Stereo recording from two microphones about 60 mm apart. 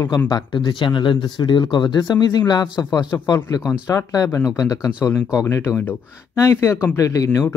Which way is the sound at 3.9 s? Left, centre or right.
Left.